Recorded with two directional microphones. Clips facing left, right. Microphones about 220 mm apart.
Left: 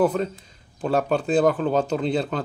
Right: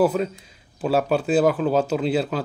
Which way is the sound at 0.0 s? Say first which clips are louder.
Right 1 dB; 5° right (ahead or behind).